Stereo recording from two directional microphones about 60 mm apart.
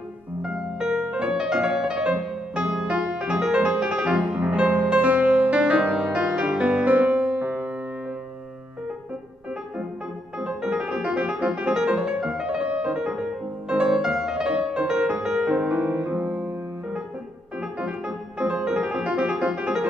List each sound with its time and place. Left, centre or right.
0.4 s music: centre; by 7.7 s right
10.4 s music: centre
15.7 s music: right
17.6 s music: centre